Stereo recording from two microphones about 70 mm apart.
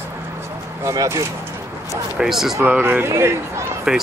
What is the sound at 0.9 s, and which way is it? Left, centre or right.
Speech, right.